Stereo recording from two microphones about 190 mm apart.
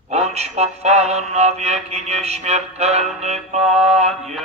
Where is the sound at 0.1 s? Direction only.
35° right (ahead or behind).